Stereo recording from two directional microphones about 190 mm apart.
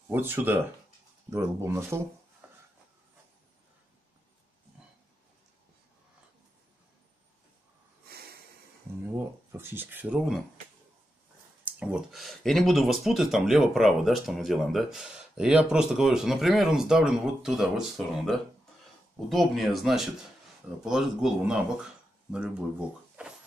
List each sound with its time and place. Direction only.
0.1 s speech: 10° right (ahead or behind)
2.4 s a sound: 5° right (ahead or behind)
8.1 s snort: 55° right (ahead or behind)
9.0 s speech: 10° right (ahead or behind)
11.6 s speech: 5° right (ahead or behind)